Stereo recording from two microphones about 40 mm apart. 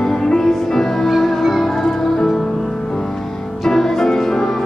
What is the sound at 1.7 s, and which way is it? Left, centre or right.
Music, centre.